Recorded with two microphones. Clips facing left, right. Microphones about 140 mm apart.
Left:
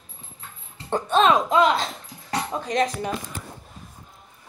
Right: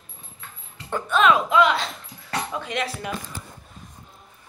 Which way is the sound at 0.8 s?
35° left (ahead or behind).